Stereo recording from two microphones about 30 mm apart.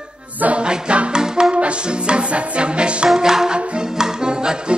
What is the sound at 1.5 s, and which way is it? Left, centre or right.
Music, right.